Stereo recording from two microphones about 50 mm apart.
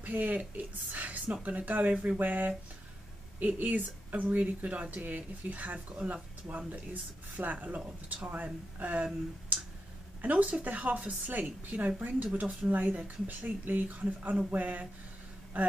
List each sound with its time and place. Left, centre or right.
0.0 s speech: right